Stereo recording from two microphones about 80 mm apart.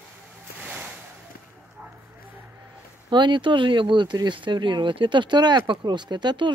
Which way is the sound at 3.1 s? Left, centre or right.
Right.